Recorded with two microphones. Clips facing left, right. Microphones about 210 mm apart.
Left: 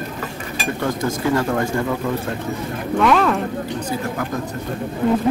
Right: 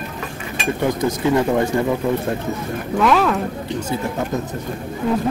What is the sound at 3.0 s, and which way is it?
Speech, centre (ahead or behind).